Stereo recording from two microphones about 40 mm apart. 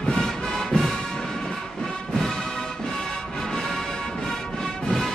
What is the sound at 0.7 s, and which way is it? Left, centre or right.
Music, centre.